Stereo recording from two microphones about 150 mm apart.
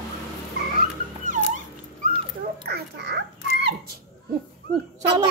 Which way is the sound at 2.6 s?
90° right.